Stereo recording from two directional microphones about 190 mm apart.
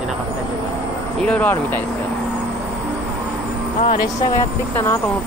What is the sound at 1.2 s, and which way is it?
Speech, 5° left (ahead or behind).